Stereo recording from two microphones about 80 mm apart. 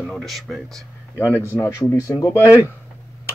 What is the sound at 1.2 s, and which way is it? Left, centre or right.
Speech, left.